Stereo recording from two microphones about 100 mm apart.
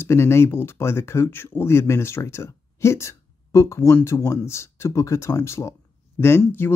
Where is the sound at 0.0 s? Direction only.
25° left (ahead or behind).